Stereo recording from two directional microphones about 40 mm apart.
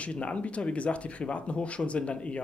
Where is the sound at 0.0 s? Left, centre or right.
Left.